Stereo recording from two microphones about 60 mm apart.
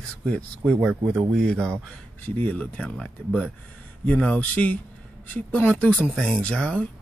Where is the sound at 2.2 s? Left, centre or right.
Left.